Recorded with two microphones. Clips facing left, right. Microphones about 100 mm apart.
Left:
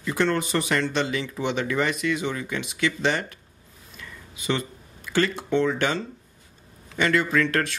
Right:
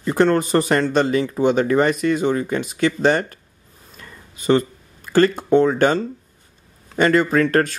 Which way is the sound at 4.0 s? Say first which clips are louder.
Right 1 dB; 40° right (ahead or behind).